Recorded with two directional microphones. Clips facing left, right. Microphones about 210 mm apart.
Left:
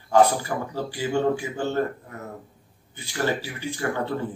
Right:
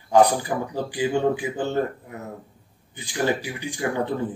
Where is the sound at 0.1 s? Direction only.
15° right (ahead or behind).